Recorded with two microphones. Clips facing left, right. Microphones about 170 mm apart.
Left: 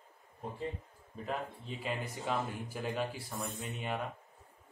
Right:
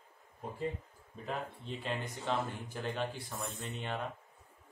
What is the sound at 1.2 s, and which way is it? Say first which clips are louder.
Speech: left 1 dB; 5° left (ahead or behind).